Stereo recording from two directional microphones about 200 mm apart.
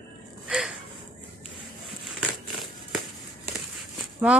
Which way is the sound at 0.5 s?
Centre (ahead or behind).